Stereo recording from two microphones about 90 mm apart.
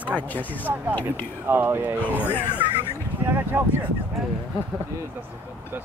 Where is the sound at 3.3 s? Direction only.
25° right (ahead or behind).